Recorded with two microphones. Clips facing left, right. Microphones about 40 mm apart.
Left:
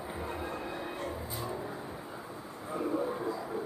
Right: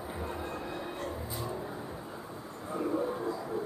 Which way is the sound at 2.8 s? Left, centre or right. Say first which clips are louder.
Right 1 dB; centre.